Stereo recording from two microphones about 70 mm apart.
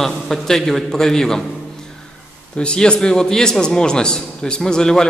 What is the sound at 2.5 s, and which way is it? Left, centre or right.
A man's voice, centre.